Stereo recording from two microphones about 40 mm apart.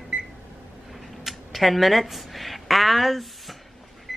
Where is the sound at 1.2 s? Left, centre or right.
Centre.